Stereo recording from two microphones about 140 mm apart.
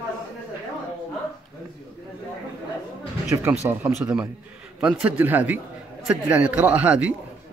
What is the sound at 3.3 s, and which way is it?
Speech, 15° right (ahead or behind).